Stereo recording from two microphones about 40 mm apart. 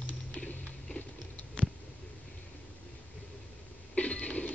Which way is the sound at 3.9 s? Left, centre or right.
Left.